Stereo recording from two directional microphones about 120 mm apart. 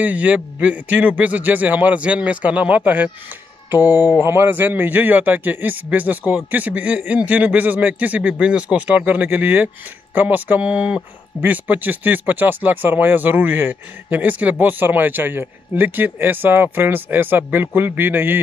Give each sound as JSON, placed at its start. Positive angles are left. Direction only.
{"t": 0.0, "sound": "speech", "side_deg": -10}